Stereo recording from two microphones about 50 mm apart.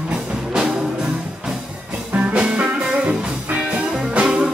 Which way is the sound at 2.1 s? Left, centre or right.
Right.